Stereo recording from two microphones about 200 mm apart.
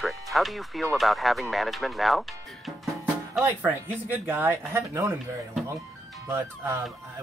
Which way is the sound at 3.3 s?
10° right (ahead or behind).